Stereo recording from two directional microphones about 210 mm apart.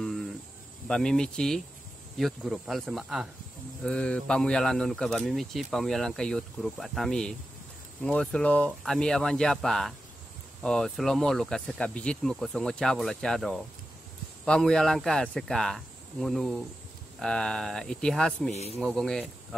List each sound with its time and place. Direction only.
0.0 s cricket: centre (ahead or behind)
0.8 s speech: 5° left (ahead or behind)
18.5 s a man's voice: 30° left (ahead or behind)
18.8 s speech: centre (ahead or behind)